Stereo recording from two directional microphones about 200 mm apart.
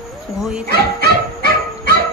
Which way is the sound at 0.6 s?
50° right (ahead or behind).